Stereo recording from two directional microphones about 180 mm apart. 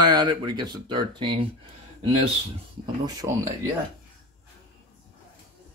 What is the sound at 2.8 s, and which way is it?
Speech, 20° right (ahead or behind).